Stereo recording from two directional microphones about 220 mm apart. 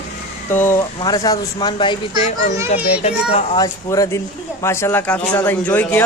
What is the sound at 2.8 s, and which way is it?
Speech, 5° right (ahead or behind).